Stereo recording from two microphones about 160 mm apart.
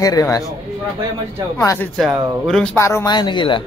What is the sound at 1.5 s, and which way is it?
Speech, 20° left (ahead or behind).